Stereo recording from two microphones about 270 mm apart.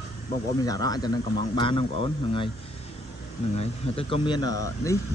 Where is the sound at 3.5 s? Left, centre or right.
Centre.